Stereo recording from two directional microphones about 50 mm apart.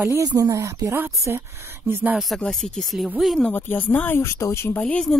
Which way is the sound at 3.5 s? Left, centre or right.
Left.